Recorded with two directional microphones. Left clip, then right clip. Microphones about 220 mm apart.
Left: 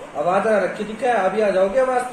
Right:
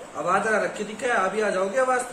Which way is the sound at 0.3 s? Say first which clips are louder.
Left 4 dB; 20° right (ahead or behind).